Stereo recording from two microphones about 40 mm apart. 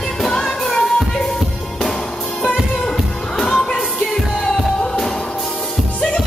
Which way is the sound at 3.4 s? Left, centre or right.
Centre.